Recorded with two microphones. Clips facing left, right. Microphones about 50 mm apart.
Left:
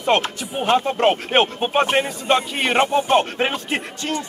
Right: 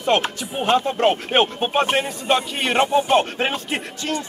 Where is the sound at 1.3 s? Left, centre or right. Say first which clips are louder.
Left 1 dB; centre.